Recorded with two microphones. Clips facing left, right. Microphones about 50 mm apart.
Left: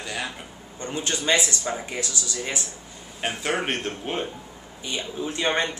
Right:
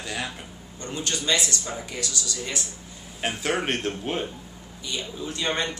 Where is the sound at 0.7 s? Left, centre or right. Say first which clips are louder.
Left 2 dB; left.